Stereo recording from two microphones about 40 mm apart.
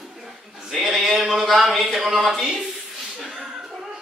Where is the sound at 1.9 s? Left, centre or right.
Centre.